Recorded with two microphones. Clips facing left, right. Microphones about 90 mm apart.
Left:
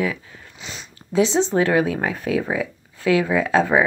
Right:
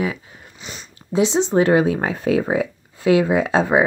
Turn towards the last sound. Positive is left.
turn(degrees=-20)  # may be behind; listen again after turning